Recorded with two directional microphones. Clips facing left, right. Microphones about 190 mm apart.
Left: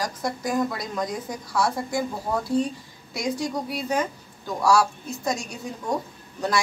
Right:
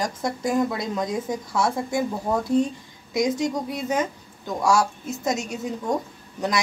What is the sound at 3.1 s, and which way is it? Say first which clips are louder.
A woman's voice: right 4 dB; 20° right (ahead or behind).